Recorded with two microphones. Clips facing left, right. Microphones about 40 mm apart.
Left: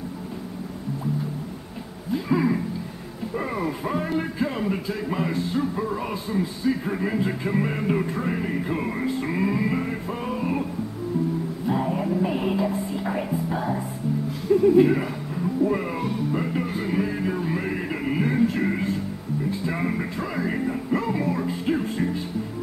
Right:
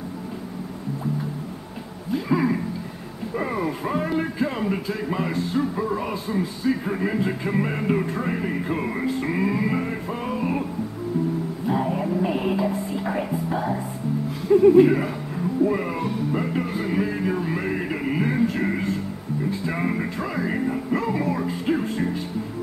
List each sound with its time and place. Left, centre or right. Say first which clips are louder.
2.1 s a sound: even; centre
3.3 s speech: right 2 dB; centre
14.5 s speech: right 3 dB; centre
14.8 s music: right 2 dB; centre